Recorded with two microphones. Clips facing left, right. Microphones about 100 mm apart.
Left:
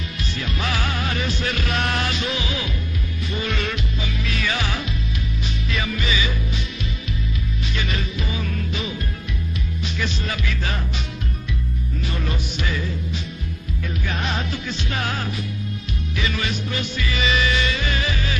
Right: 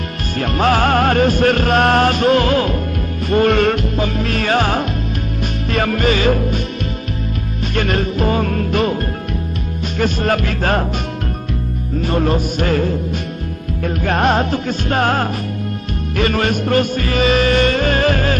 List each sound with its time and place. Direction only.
0.4 s music: 50° right (ahead or behind)
7.7 s music: 55° right (ahead or behind)
9.9 s music: 50° right (ahead or behind)
12.0 s music: 50° right (ahead or behind)